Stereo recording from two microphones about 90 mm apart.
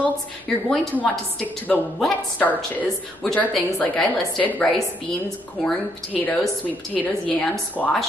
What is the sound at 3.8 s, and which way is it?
Speech, 20° left (ahead or behind).